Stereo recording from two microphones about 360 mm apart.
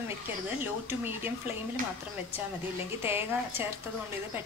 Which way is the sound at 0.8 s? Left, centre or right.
Centre.